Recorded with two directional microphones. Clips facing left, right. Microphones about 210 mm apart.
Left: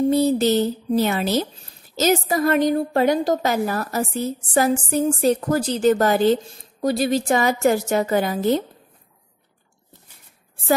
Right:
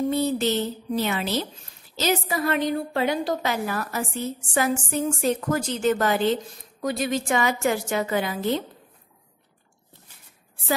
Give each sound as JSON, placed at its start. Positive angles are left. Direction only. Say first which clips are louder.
{"t": 0.1, "sound": "a woman's voice", "louder": "left 6 dB", "side_deg": 40}